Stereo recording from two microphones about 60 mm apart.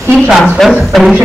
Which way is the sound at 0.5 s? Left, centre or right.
Centre.